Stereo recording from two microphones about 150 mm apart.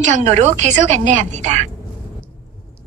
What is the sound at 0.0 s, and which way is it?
A woman's voice, 50° right (ahead or behind).